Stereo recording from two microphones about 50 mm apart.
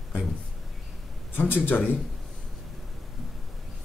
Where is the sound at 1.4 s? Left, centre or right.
Left.